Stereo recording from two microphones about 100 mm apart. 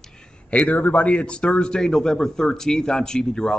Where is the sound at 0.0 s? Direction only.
15° left (ahead or behind).